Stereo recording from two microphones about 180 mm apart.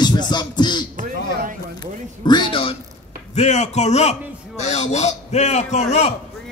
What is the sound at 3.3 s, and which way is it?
A man's voice, 40° left (ahead or behind).